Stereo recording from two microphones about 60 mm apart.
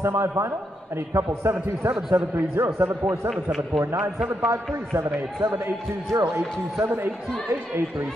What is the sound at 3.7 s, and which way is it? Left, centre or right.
Speech, right.